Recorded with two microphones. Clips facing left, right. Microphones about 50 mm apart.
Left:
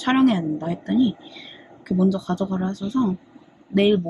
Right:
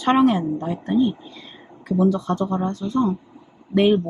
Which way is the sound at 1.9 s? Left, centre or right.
Right.